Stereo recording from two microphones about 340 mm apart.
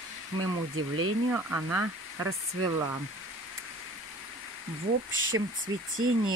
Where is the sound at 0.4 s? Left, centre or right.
Right.